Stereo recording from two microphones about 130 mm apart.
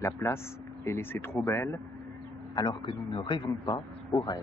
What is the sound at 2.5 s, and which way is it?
A man's voice, 35° left (ahead or behind).